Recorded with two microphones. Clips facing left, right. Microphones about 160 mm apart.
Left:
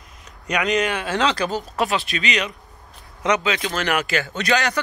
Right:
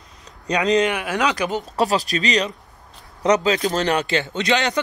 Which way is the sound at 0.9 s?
15° right (ahead or behind).